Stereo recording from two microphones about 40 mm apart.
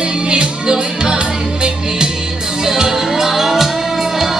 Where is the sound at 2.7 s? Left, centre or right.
Centre.